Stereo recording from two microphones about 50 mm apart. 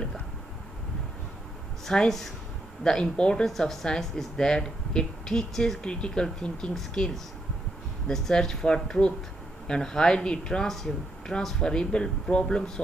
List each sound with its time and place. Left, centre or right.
1.9 s speech: centre
3.4 s speech: centre